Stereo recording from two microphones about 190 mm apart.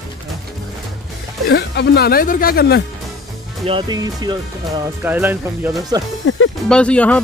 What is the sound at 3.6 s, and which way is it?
Speech, 25° right (ahead or behind).